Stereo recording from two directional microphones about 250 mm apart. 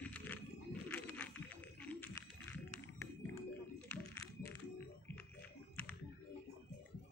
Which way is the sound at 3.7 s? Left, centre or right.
Centre.